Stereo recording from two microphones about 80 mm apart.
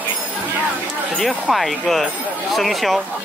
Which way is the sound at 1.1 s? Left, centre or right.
Centre.